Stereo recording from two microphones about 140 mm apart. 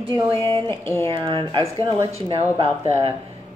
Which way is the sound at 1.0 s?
40° right (ahead or behind).